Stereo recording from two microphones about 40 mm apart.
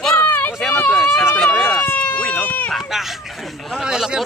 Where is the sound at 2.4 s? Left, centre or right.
Left.